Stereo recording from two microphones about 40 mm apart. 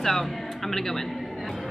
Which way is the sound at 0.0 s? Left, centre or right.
Centre.